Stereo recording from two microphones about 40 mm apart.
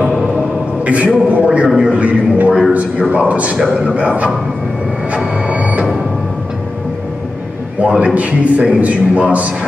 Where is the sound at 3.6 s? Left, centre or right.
Centre.